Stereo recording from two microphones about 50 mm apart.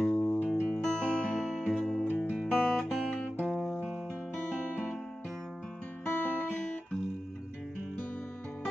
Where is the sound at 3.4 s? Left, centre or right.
Centre.